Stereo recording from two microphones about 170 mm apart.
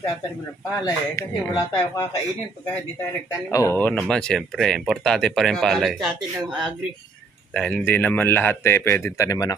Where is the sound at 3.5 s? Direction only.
15° left (ahead or behind); by 6.5 s centre (ahead or behind).